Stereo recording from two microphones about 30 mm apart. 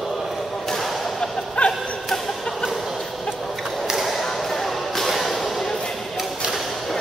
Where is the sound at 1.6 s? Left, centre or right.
Left.